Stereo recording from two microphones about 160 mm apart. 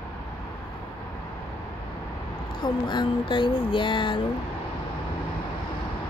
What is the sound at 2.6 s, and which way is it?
Speech, 30° left (ahead or behind).